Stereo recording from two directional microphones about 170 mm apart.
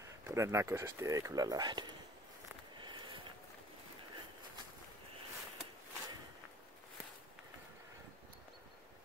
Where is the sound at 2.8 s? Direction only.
30° right (ahead or behind).